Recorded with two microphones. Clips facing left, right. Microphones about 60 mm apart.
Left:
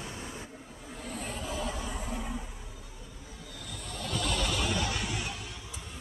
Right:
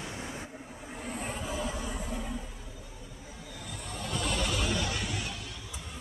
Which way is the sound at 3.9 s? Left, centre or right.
Centre.